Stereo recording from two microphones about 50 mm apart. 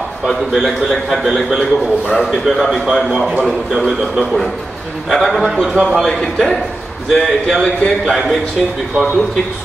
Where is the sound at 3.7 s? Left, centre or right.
Centre.